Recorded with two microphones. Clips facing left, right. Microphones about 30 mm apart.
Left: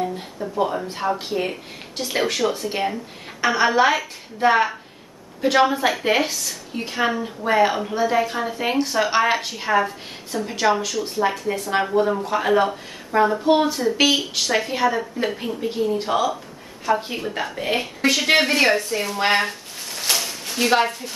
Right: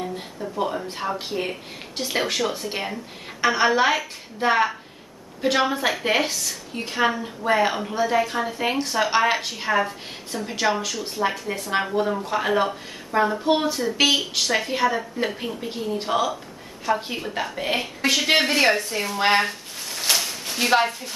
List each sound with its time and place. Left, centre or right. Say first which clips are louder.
0.6 s a woman's voice: left 3 dB; centre